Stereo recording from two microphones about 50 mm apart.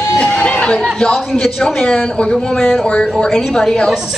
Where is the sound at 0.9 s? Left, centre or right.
Centre.